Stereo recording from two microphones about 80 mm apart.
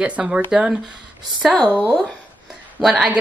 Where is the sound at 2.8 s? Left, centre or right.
Centre.